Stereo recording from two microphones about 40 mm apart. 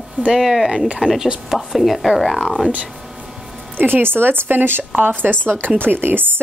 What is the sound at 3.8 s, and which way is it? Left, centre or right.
A woman's voice, right.